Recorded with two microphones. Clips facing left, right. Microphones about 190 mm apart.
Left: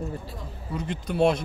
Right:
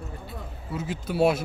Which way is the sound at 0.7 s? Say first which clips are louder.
Even; 5° right (ahead or behind).